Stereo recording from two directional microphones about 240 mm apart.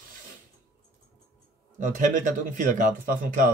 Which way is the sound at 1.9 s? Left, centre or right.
Right.